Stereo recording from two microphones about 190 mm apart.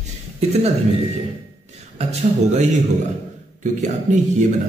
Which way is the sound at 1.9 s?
35° right (ahead or behind).